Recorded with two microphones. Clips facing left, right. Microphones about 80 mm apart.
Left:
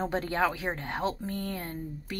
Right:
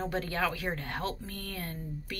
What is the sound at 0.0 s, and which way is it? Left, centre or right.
Speech, left.